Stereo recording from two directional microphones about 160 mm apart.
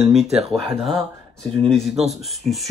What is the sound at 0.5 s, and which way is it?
Speech, centre (ahead or behind).